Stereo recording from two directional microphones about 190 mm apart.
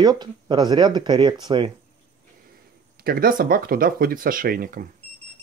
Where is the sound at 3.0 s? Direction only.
50° right (ahead or behind).